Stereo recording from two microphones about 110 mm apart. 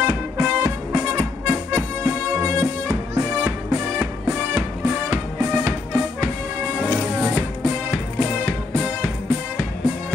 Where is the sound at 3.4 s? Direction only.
20° right (ahead or behind).